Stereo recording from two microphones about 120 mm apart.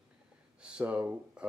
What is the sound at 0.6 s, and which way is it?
Speech, 10° right (ahead or behind).